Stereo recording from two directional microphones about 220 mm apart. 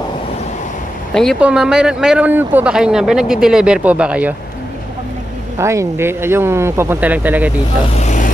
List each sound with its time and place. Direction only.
1.1 s a man's voice: centre (ahead or behind)
5.6 s speech: 15° right (ahead or behind)
8.0 s vehicle: 35° left (ahead or behind)